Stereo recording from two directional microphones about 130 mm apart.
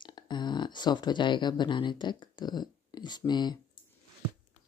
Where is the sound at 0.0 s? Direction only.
35° left (ahead or behind).